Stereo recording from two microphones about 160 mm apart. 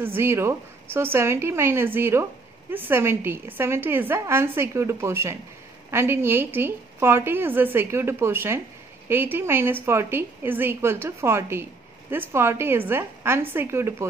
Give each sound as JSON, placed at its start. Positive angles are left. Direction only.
{"t": 0.0, "sound": "a woman's voice", "side_deg": -15}